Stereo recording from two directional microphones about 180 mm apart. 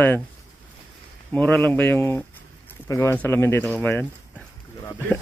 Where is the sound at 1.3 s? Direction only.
10° left (ahead or behind).